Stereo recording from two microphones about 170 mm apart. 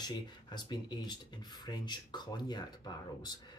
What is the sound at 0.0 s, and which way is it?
Speech, 25° left (ahead or behind).